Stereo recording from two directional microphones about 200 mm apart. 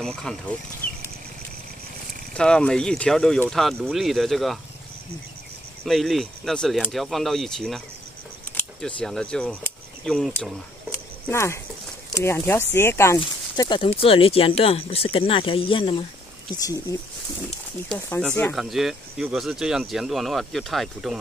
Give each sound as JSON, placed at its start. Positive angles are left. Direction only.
{"t": 0.0, "sound": "speech", "side_deg": 5}
{"t": 2.3, "sound": "speech", "side_deg": 5}
{"t": 5.9, "sound": "speech", "side_deg": 0}
{"t": 11.2, "sound": "speech", "side_deg": 15}
{"t": 13.2, "sound": "speech", "side_deg": 25}